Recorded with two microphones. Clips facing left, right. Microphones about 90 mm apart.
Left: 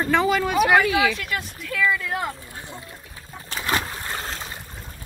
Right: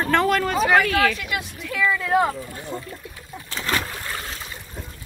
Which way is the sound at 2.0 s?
35° right (ahead or behind).